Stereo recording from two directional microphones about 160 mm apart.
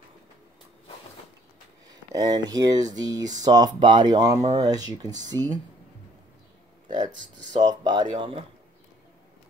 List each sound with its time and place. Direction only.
2.1 s speech: 25° right (ahead or behind)
6.9 s speech: 30° right (ahead or behind)